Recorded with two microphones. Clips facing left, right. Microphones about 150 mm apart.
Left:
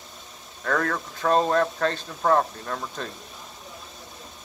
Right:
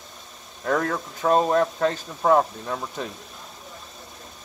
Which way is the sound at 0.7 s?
20° right (ahead or behind).